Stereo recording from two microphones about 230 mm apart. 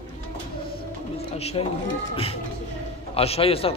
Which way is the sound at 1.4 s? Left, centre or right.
Left.